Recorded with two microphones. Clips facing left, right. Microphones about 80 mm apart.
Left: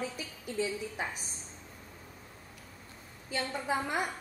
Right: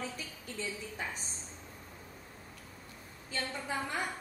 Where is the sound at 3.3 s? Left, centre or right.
Centre.